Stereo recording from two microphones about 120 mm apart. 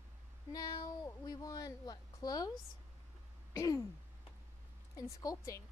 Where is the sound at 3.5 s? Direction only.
25° left (ahead or behind).